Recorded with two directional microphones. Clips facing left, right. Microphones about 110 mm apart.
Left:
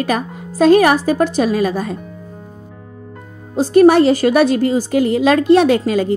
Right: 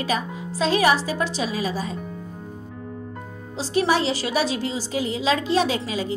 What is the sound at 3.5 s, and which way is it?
A woman's voice, 50° left (ahead or behind).